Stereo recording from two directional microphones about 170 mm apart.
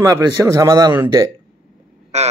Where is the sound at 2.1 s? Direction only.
40° right (ahead or behind).